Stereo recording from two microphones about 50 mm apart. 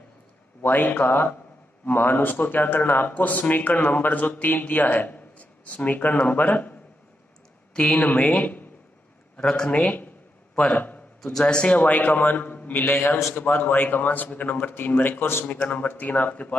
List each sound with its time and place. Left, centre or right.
0.6 s speech: left
7.7 s speech: left
9.4 s a man's voice: centre
10.7 s a sound: left
11.3 s speech: centre; by 12.9 s left
12.9 s a man's voice: left
13.3 s speech: left